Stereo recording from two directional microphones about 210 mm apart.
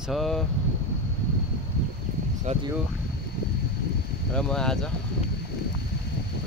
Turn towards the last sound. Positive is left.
turn(degrees=5)  # may be behind; listen again after turning